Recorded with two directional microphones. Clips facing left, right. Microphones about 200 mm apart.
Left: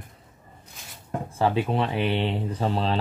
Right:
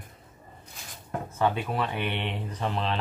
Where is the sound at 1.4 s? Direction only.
30° left (ahead or behind).